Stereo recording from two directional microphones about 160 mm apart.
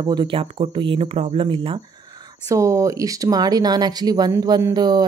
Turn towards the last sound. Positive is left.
turn(degrees=-25)  # may be behind; listen again after turning